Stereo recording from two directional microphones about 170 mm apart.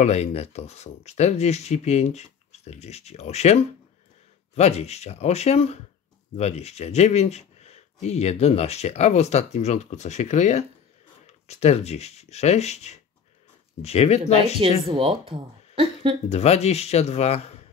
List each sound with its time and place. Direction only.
0.0 s speech: 40° left (ahead or behind)
14.9 s speech: 35° right (ahead or behind)
16.3 s speech: 40° left (ahead or behind)